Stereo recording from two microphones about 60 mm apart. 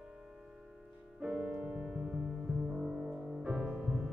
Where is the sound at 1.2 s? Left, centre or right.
Centre.